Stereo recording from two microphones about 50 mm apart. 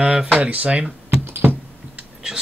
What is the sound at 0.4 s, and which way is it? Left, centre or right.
Speech, right.